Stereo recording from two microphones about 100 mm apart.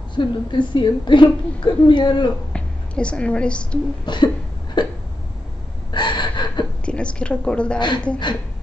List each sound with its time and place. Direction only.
0.1 s a woman's voice: 50° left (ahead or behind)
2.5 s a woman's voice: 10° left (ahead or behind)
4.0 s a woman's voice: 50° left (ahead or behind)
5.9 s gasp: 50° left (ahead or behind)
6.9 s a woman's voice: 10° left (ahead or behind)